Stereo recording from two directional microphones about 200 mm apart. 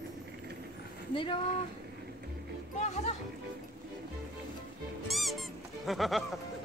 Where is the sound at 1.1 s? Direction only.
25° left (ahead or behind).